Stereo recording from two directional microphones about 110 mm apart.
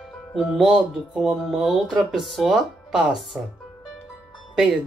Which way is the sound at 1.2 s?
Centre (ahead or behind).